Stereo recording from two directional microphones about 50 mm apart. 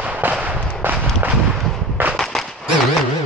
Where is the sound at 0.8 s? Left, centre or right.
Right.